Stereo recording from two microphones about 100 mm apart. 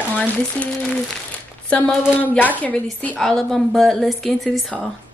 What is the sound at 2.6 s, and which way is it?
Speech, 15° left (ahead or behind).